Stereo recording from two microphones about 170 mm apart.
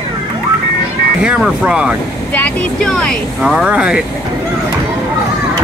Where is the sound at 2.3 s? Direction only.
5° left (ahead or behind).